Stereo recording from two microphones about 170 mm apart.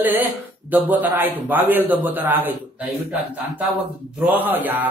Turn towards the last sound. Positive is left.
turn(degrees=-10)  # may be behind; listen again after turning